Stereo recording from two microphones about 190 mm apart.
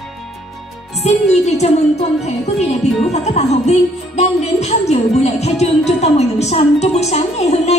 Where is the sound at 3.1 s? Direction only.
35° left (ahead or behind).